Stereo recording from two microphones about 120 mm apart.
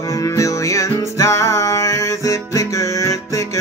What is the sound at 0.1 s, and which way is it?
Music, 25° left (ahead or behind).